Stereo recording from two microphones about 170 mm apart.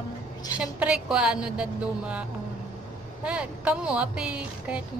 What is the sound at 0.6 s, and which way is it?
A woman's voice, 5° right (ahead or behind).